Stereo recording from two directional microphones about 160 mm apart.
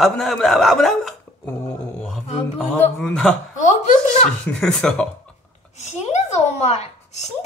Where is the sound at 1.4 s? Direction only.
15° left (ahead or behind).